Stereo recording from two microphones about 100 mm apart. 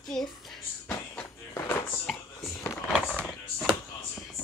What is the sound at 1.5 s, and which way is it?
Music, 30° left (ahead or behind).